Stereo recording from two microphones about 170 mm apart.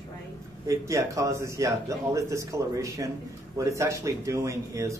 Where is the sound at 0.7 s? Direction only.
20° right (ahead or behind).